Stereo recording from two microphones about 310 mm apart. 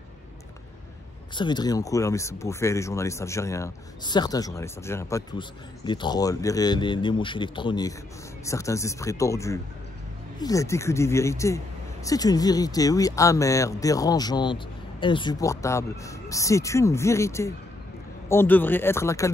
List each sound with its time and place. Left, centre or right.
1.3 s speech: centre